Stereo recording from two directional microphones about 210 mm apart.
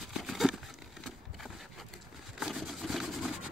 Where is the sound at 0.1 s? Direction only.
Centre (ahead or behind).